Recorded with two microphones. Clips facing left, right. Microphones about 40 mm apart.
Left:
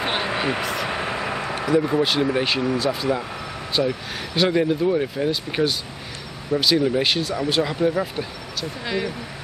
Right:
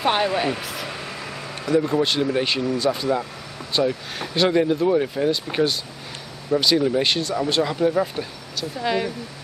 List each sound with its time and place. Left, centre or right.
0.4 s speech: left
0.8 s vehicle: left
1.7 s speech: centre